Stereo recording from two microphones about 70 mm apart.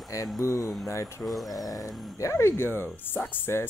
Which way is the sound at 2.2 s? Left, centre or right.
Left.